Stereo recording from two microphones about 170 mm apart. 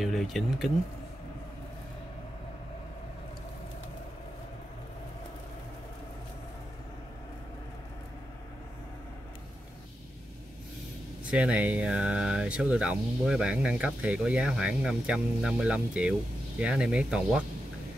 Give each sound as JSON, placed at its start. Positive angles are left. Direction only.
{"t": 0.0, "sound": "speech", "side_deg": 0}
{"t": 11.2, "sound": "speech", "side_deg": -5}